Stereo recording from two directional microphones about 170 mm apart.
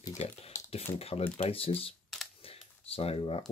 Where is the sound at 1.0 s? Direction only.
35° left (ahead or behind).